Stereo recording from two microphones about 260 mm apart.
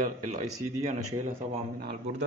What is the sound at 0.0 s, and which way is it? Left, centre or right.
Speech, right.